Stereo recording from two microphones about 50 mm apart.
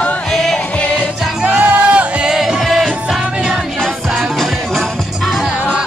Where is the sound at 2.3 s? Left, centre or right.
Centre.